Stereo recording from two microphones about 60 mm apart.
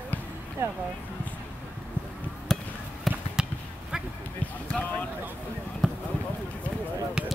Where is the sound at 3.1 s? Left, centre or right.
Centre.